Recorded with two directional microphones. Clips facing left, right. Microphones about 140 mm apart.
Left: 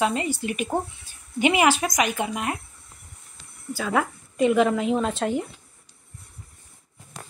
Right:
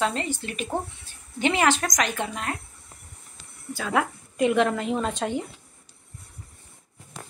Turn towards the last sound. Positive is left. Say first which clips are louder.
# left 3 dB
turn(degrees=5)  # may be behind; listen again after turning